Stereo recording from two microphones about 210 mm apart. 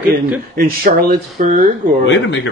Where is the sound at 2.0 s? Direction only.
60° left (ahead or behind).